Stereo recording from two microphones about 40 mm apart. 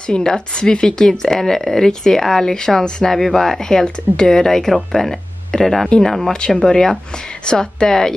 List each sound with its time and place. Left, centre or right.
0.0 s speech: centre